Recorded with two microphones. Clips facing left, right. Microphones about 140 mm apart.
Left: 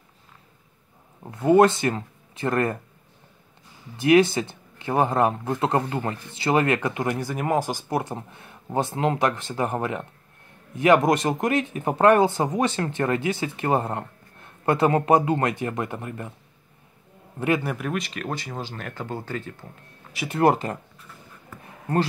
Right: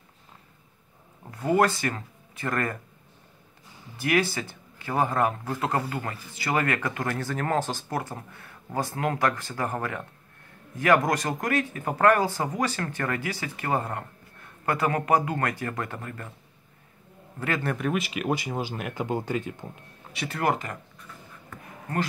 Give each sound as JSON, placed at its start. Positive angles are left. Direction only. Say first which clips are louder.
{"t": 1.2, "sound": "speech", "louder": "left 6 dB", "side_deg": 25}
{"t": 4.0, "sound": "speech", "louder": "left 8 dB", "side_deg": 25}
{"t": 17.6, "sound": "speech", "louder": "right 1 dB", "side_deg": 0}
{"t": 20.2, "sound": "speech", "louder": "left 7 dB", "side_deg": 30}